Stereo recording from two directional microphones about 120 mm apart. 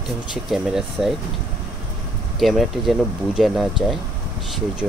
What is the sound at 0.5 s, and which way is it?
Speech, 5° right (ahead or behind).